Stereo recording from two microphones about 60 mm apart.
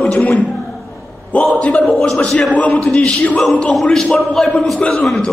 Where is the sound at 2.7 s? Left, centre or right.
Centre.